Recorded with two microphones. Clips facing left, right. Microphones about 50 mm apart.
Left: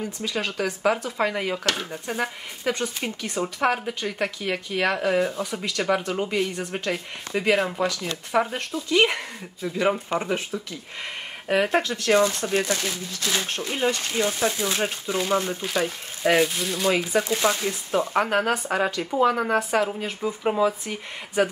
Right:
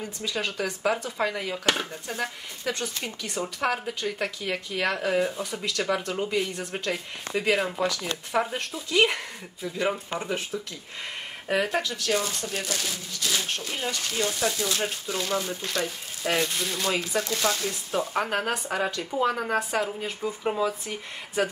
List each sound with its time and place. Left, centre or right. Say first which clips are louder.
0.3 s speech: left 2 dB; centre
9.9 s speech: left 6 dB; left
10.2 s speech: left 3 dB; centre
11.7 s speech: left 6 dB; left; by 16.4 s centre
16.4 s speech: left 4 dB; centre; by 18.2 s left
18.2 s speech: left 5 dB; centre
18.7 s speech: left 4 dB; centre
19.2 s speech: left 4 dB; centre